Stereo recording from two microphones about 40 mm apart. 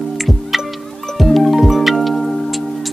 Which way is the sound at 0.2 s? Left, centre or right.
Centre.